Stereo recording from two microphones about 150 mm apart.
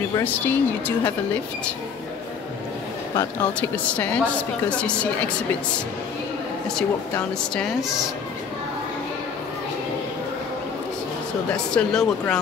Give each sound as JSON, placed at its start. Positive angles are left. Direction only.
{"t": 0.2, "sound": "a woman's voice", "side_deg": 10}
{"t": 3.6, "sound": "a woman's voice", "side_deg": 10}
{"t": 6.7, "sound": "speech", "side_deg": 5}
{"t": 11.7, "sound": "speech", "side_deg": 5}